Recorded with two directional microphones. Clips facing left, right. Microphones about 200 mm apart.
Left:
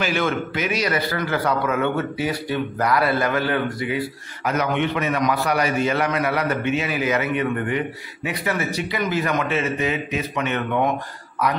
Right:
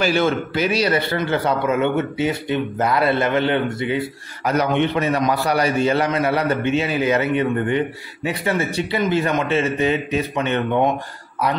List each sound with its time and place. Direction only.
0.0 s a man's voice: 35° right (ahead or behind)